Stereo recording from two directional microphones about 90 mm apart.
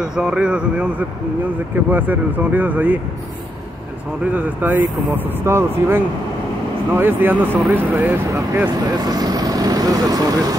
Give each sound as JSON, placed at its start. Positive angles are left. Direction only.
{"t": 0.0, "sound": "speech", "side_deg": -5}
{"t": 1.9, "sound": "speech", "side_deg": -20}
{"t": 4.3, "sound": "speech", "side_deg": -20}
{"t": 8.6, "sound": "speech", "side_deg": -50}